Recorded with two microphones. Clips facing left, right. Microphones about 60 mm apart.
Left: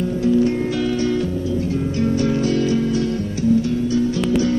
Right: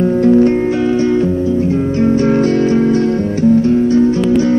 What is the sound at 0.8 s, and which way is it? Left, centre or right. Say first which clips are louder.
Music: right 7 dB; right.